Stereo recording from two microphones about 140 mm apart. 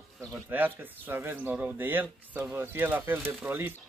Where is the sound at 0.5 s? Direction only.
15° right (ahead or behind).